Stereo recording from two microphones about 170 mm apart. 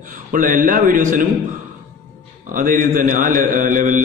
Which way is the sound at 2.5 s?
55° right (ahead or behind).